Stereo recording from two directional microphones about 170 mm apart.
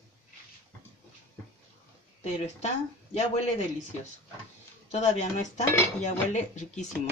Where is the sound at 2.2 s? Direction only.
40° left (ahead or behind).